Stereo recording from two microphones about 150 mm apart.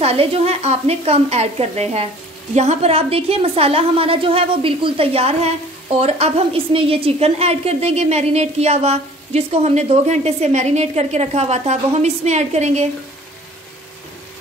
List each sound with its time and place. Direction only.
0.0 s a woman's voice: 40° right (ahead or behind)